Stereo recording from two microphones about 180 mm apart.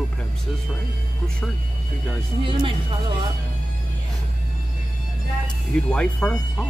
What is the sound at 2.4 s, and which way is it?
Speech, 30° right (ahead or behind).